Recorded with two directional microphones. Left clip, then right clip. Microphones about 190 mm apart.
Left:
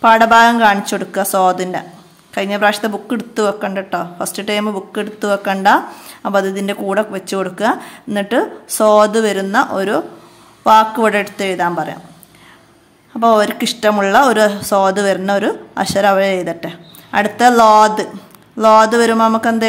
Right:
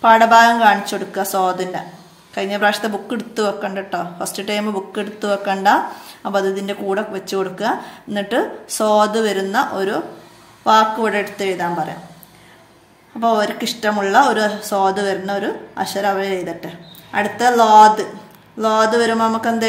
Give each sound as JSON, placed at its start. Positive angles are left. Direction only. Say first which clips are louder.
{"t": 0.0, "sound": "speech", "louder": "left 2 dB", "side_deg": 25}
{"t": 13.2, "sound": "speech", "louder": "left 5 dB", "side_deg": 35}